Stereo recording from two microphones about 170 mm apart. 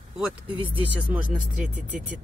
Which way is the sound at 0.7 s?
10° right (ahead or behind).